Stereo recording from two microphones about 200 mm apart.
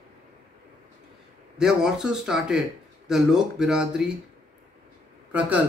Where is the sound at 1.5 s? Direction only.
Centre (ahead or behind).